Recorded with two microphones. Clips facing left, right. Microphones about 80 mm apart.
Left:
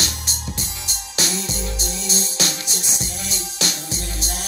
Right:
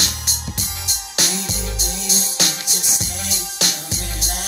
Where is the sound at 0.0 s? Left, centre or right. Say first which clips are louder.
Even; left.